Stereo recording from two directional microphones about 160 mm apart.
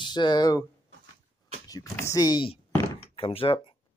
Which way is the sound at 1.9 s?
20° left (ahead or behind).